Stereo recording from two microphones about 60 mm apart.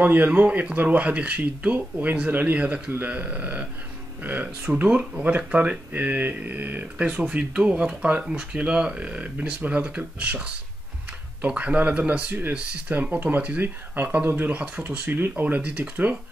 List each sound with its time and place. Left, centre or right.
0.0 s speech: right
7.0 s speech: centre
11.4 s speech: right
15.4 s speech: right